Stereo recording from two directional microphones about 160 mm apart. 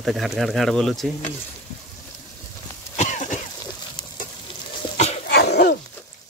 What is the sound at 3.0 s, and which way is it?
Cough, 50° left (ahead or behind).